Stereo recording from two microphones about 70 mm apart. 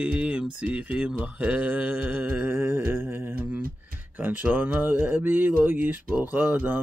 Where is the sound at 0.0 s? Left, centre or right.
Centre.